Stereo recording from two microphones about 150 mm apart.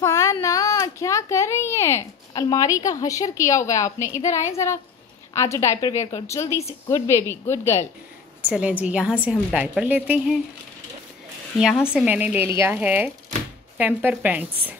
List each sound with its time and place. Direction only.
0.0 s a child's voice: 20° left (ahead or behind)
8.4 s a woman's voice: 10° right (ahead or behind)
11.9 s a woman's voice: 10° right (ahead or behind)